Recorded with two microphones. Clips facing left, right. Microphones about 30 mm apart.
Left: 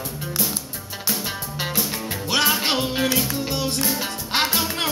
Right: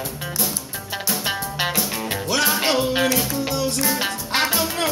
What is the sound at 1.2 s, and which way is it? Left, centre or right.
Music, right.